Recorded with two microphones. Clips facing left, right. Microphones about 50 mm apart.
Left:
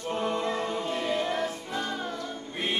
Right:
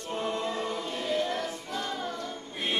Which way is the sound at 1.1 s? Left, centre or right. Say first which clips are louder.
Right 1 dB; centre.